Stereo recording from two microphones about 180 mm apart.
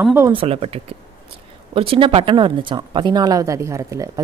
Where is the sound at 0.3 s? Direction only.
30° right (ahead or behind).